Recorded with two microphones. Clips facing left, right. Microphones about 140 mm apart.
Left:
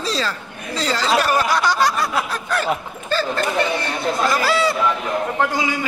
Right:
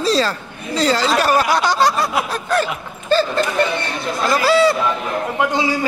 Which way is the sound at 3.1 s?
30° right (ahead or behind).